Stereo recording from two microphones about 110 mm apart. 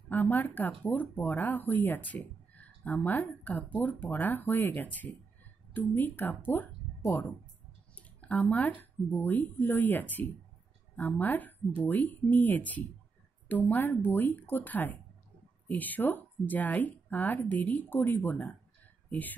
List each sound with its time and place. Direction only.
0.1 s a woman's voice: 15° left (ahead or behind)